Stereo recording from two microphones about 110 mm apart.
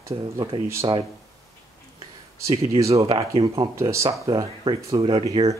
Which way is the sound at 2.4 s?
30° right (ahead or behind).